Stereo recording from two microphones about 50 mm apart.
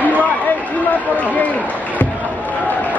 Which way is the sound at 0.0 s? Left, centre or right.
Left.